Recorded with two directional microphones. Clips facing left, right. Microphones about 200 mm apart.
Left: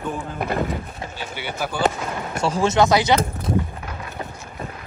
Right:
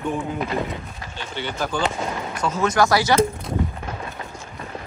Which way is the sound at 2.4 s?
30° left (ahead or behind).